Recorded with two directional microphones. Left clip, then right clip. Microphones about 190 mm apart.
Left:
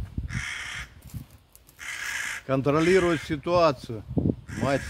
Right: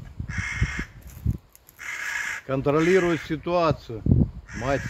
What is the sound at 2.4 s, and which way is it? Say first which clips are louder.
Speech: right 1 dB; 55° left (ahead or behind).